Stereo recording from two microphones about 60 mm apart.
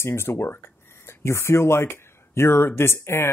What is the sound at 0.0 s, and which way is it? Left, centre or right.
Speech, left.